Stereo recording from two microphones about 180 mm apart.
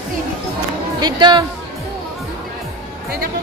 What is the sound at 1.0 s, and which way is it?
Speech, 25° right (ahead or behind).